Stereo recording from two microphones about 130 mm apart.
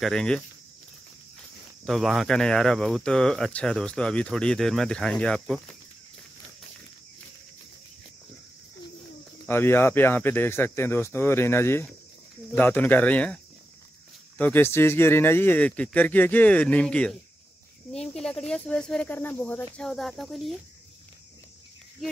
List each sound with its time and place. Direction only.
0.0 s speech: 5° left (ahead or behind)
1.9 s speech: centre (ahead or behind)
9.5 s speech: 15° left (ahead or behind)
14.4 s speech: 15° left (ahead or behind)
19.9 s speech: centre (ahead or behind)